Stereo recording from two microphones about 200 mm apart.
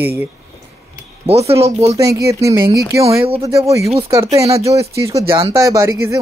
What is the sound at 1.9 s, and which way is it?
Speech, 15° right (ahead or behind).